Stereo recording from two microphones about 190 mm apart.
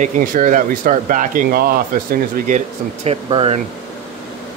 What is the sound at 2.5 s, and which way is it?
Speech, 35° right (ahead or behind).